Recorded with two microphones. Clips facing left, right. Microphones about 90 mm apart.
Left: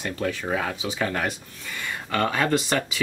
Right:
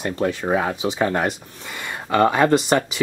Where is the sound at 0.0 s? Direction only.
25° right (ahead or behind).